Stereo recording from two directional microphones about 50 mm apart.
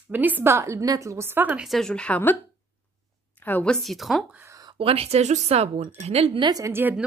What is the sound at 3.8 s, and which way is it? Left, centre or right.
Speech, centre.